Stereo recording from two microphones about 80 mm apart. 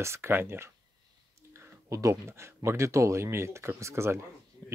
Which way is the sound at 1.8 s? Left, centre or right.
Right.